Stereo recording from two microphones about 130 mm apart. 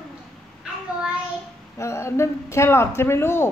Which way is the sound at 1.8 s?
20° left (ahead or behind).